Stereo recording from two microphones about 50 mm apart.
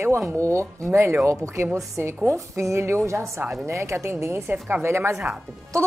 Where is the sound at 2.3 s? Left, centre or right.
Right.